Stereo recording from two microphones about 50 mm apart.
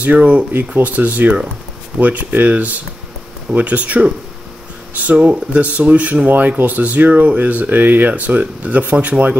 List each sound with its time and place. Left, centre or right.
0.0 s speech: right
0.5 s speech: right
0.8 s speech: right